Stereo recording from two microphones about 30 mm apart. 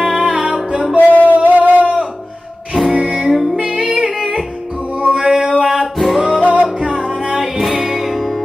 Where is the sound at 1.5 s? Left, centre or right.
Right.